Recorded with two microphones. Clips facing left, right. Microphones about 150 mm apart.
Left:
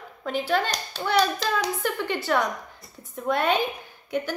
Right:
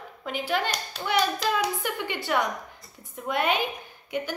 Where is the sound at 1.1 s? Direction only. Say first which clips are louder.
Left 1 dB; 35° left (ahead or behind).